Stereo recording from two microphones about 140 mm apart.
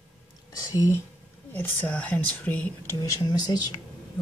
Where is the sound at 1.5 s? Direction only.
15° left (ahead or behind).